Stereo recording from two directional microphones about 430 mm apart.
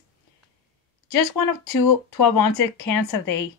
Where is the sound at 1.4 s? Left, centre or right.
Left.